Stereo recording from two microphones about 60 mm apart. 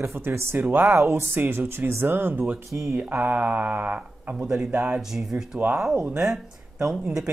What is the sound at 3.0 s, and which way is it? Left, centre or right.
Speech, right.